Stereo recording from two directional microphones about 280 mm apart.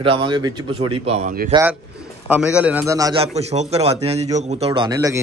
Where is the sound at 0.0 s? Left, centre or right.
Centre.